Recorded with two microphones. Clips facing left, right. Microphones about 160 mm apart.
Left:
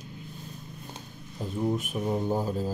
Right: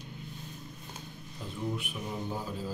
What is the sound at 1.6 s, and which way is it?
Speech, 45° left (ahead or behind).